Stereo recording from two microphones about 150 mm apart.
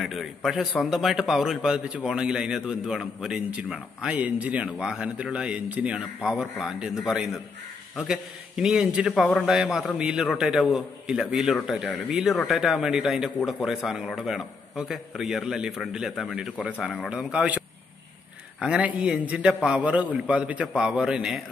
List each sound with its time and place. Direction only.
0.0 s a man's voice: centre (ahead or behind)
13.4 s a man's voice: 10° left (ahead or behind)
18.6 s a man's voice: 10° right (ahead or behind)